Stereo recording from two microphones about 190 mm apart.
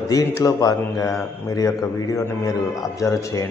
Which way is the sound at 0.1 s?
20° left (ahead or behind).